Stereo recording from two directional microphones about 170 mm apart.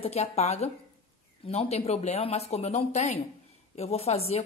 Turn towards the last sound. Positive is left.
turn(degrees=35)  # may be behind; listen again after turning